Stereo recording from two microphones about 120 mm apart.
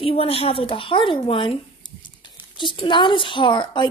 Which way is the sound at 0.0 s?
55° left (ahead or behind).